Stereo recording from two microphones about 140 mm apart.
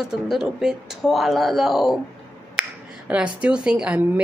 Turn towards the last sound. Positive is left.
turn(degrees=-10)  # may be behind; listen again after turning